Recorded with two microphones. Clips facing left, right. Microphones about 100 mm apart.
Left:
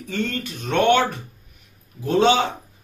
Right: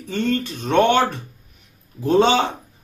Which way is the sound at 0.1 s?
20° right (ahead or behind).